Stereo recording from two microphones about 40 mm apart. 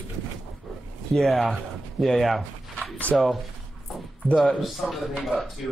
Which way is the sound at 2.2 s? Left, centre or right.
Centre.